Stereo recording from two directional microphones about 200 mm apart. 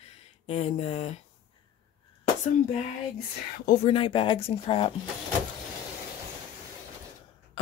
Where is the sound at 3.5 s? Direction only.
40° left (ahead or behind); by 4.9 s 25° left (ahead or behind).